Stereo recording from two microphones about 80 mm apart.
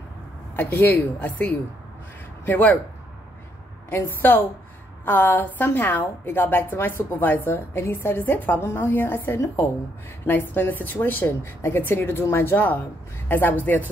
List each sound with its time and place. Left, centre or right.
0.6 s a woman's voice: left
3.9 s a woman's voice: left